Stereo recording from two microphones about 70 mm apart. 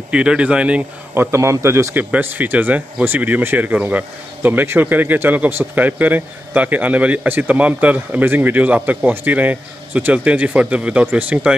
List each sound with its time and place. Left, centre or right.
0.1 s speech: centre
1.1 s a man's voice: right
2.0 s speech: right